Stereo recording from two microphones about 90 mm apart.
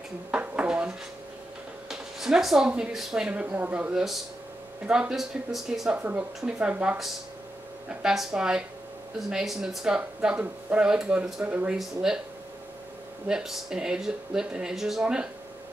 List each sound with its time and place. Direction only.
0.3 s dishes: 10° right (ahead or behind)
1.9 s speech: 5° right (ahead or behind)
3.9 s speech: 5° right (ahead or behind)
5.9 s a woman's voice: 20° right (ahead or behind)
13.3 s speech: 5° right (ahead or behind)